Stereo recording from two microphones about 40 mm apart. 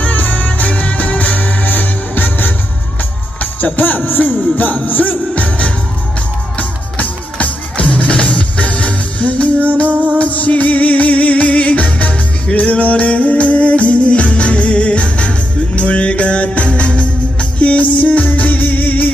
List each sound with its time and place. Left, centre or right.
0.0 s music: left
3.3 s music: left
5.3 s music: left
7.0 s music: left